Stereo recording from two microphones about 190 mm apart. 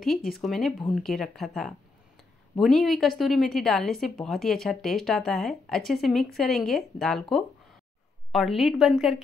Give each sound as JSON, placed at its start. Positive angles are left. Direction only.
{"t": 0.0, "sound": "speech", "side_deg": 0}